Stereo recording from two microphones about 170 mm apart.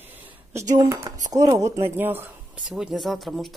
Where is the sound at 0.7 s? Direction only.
15° right (ahead or behind).